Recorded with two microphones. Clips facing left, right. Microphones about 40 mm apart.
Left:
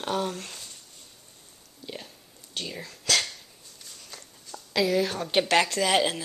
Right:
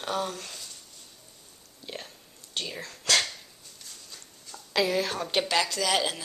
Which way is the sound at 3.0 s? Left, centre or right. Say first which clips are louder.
Right 1 dB; right.